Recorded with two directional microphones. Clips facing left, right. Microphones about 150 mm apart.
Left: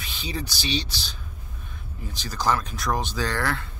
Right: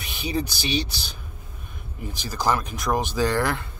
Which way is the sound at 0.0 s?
15° right (ahead or behind).